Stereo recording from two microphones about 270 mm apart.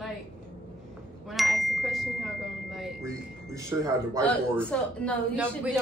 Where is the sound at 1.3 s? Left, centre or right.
Centre.